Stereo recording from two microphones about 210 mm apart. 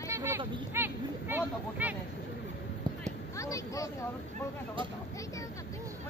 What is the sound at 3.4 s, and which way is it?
Speech, 15° left (ahead or behind).